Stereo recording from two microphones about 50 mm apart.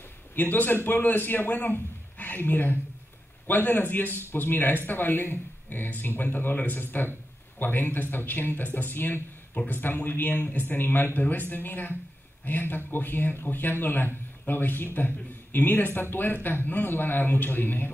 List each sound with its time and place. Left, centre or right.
0.4 s speech: left